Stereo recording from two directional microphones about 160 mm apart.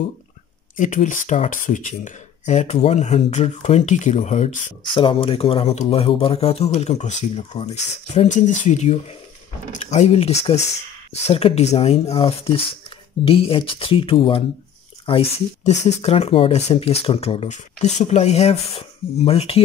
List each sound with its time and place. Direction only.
0.7 s speech: 50° left (ahead or behind)
4.8 s speech: 30° left (ahead or behind)